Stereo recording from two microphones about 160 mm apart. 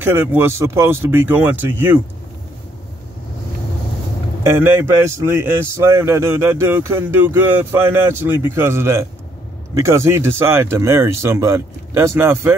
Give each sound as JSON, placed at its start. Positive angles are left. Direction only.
{"t": 0.0, "sound": "a man's voice", "side_deg": -10}
{"t": 4.4, "sound": "a man's voice", "side_deg": -15}